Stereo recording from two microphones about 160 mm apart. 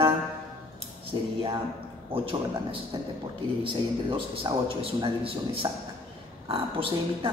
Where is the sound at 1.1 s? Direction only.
25° right (ahead or behind).